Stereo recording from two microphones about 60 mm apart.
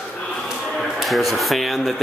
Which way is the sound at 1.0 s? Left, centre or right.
Centre.